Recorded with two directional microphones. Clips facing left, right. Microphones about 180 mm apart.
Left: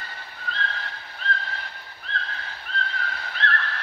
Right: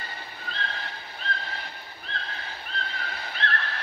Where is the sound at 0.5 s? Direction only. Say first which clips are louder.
Left 3 dB; 10° right (ahead or behind).